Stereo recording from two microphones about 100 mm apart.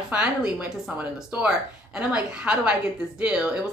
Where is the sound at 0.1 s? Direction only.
10° right (ahead or behind).